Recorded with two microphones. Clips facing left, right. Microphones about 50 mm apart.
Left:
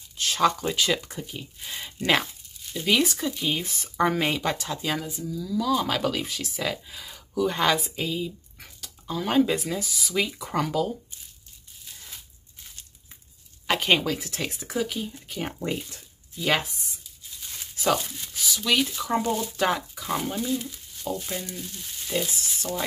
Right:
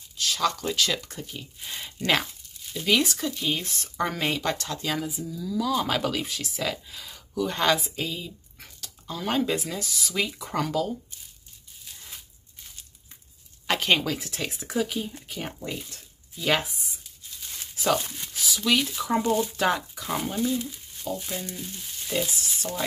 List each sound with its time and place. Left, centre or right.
0.2 s a sound: left
0.5 s speech: centre
5.0 s speech: centre
13.7 s speech: centre
17.4 s tearing: centre
18.3 s speech: centre